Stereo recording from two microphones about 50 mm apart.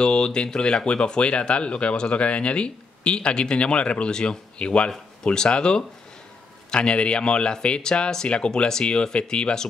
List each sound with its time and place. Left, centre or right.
0.0 s speech: centre